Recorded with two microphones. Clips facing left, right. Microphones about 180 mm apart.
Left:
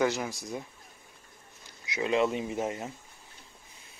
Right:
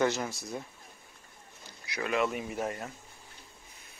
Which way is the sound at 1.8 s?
20° left (ahead or behind).